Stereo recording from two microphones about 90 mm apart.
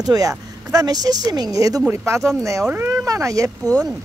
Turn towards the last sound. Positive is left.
turn(degrees=-40)  # may be behind; listen again after turning